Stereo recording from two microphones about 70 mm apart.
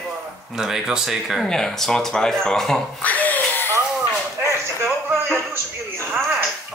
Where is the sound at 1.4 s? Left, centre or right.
Centre.